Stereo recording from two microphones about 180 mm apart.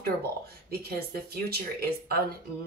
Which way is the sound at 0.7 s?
60° right (ahead or behind).